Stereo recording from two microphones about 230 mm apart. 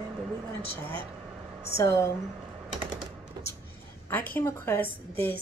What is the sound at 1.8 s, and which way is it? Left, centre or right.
Speech, centre.